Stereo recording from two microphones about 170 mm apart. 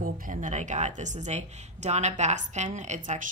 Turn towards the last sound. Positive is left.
turn(degrees=-45)  # may be behind; listen again after turning